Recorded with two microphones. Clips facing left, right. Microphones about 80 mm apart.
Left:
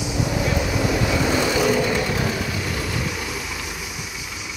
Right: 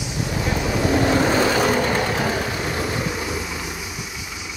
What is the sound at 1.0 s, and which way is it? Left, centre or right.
Vehicle, right.